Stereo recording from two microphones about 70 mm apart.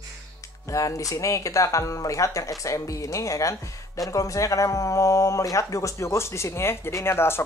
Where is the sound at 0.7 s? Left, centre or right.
Left.